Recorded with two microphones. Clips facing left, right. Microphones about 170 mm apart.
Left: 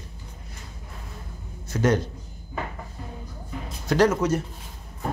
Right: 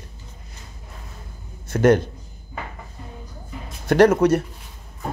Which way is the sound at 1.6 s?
55° right (ahead or behind).